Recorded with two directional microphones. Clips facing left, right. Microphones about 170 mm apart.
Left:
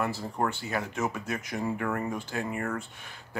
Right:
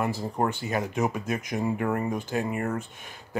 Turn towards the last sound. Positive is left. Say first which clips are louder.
# right 3 dB
turn(degrees=-20)  # may be behind; listen again after turning